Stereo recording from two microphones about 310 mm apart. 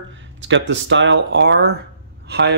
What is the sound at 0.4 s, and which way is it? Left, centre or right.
Speech, right.